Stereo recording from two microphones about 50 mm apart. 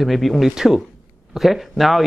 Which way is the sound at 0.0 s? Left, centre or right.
Centre.